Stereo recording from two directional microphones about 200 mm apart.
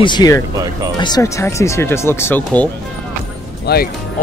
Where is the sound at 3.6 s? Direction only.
50° left (ahead or behind).